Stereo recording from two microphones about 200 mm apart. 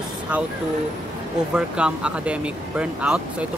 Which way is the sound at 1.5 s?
5° right (ahead or behind).